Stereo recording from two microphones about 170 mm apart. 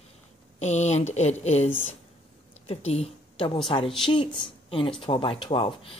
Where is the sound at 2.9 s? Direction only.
35° left (ahead or behind).